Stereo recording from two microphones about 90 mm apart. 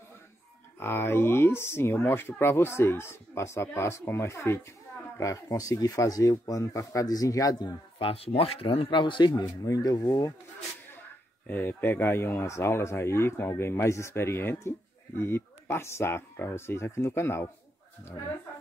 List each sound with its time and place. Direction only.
0.7 s speech: 25° left (ahead or behind); by 7.7 s 45° left (ahead or behind)
8.0 s speech: 90° left
8.9 s speech: 60° left (ahead or behind)
9.7 s speech: 45° left (ahead or behind)
11.4 s speech: 20° left (ahead or behind)